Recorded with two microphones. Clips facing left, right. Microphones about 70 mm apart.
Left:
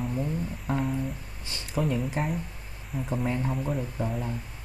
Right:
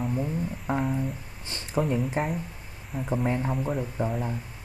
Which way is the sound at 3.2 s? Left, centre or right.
Centre.